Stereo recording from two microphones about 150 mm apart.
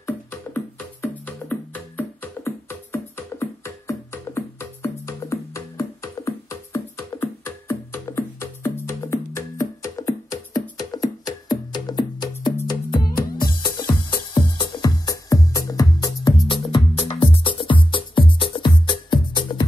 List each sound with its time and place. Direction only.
0.0 s music: 15° left (ahead or behind); by 12.5 s 30° left (ahead or behind)
13.6 s music: 30° left (ahead or behind)